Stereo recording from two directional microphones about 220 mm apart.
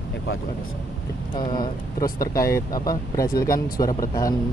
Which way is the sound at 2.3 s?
15° left (ahead or behind).